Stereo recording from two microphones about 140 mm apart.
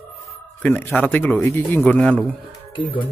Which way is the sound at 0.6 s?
10° left (ahead or behind).